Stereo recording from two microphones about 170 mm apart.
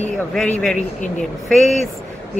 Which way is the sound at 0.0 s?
5° left (ahead or behind).